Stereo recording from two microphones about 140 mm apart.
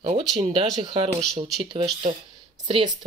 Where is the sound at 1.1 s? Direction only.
5° left (ahead or behind).